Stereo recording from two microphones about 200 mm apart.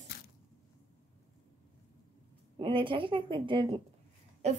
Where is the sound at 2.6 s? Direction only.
25° right (ahead or behind).